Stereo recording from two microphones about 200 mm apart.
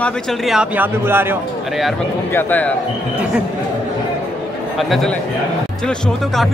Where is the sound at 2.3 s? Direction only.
10° left (ahead or behind).